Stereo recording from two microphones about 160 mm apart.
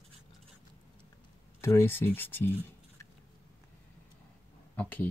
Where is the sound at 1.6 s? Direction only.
15° left (ahead or behind).